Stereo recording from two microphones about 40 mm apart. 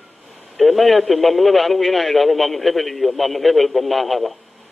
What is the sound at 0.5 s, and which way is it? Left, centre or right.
A man's voice, centre.